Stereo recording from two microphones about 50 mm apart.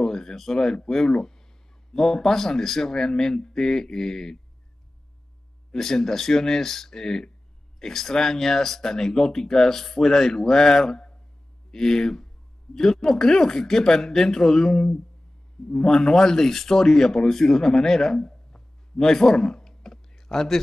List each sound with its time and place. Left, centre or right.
0.0 s speech: centre
5.7 s speech: centre